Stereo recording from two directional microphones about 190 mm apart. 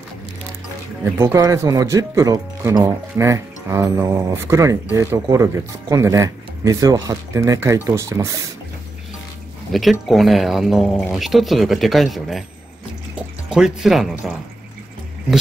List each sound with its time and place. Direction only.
1.0 s speech: 10° right (ahead or behind)
9.7 s speech: centre (ahead or behind)